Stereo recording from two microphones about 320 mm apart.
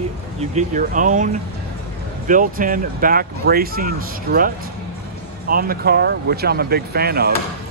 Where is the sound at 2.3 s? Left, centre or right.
Right.